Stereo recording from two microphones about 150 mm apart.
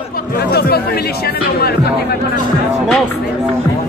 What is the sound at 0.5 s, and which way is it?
Speech, 90° left.